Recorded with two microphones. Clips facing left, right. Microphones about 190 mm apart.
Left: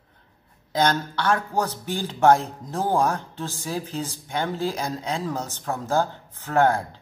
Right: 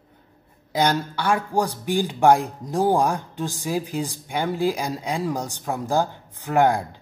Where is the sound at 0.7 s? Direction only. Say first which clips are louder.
Right 1 dB; 10° right (ahead or behind).